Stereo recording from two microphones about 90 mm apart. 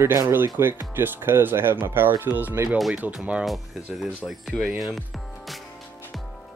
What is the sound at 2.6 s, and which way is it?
Speech, centre (ahead or behind).